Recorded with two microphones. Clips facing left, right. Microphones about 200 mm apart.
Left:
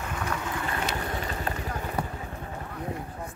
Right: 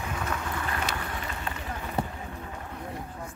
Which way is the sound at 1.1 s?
40° left (ahead or behind).